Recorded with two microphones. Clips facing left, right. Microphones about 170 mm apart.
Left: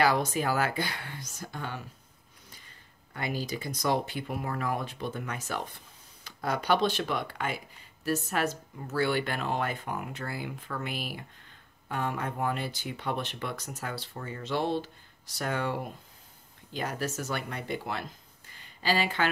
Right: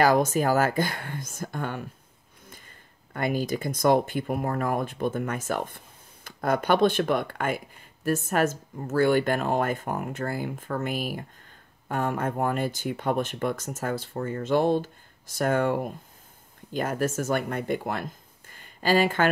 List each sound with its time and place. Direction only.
0.0 s speech: 45° right (ahead or behind)
3.1 s speech: 50° right (ahead or behind)